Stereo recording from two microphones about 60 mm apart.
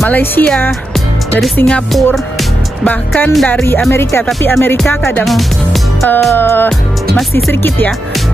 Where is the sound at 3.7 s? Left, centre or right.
Left.